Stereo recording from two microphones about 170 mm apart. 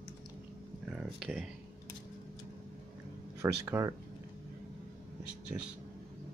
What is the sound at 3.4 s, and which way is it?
Speech, 15° right (ahead or behind).